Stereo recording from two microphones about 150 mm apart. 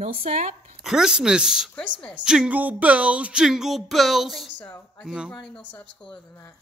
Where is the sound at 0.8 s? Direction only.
5° right (ahead or behind).